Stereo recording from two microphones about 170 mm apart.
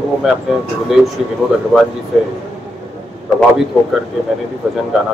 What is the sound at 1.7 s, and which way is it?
Speech, 5° right (ahead or behind).